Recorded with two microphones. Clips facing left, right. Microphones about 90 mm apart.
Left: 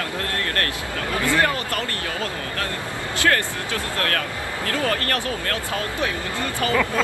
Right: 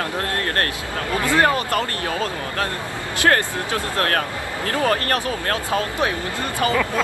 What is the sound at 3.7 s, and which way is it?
Speech, 25° right (ahead or behind).